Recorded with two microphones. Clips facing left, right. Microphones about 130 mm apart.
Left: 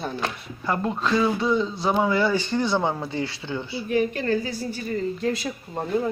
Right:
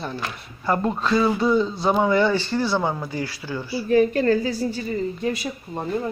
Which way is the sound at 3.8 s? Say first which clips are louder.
Right 6 dB; 40° right (ahead or behind).